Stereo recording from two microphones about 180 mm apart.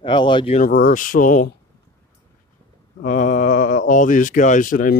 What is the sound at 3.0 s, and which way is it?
Speech, 45° left (ahead or behind).